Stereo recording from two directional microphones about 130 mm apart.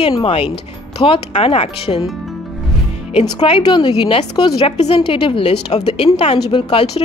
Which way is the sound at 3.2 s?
40° left (ahead or behind).